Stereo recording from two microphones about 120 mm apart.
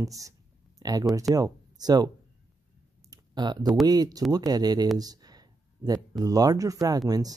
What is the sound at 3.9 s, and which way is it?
Speech, 30° right (ahead or behind).